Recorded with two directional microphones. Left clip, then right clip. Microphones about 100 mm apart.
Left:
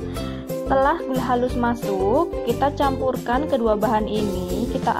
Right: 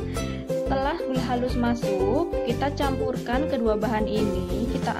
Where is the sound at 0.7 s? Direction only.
30° left (ahead or behind).